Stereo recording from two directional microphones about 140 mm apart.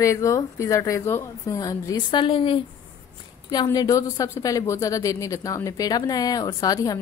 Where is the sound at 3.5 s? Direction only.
30° left (ahead or behind).